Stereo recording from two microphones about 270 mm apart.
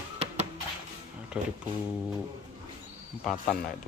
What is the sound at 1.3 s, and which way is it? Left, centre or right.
Speech, centre.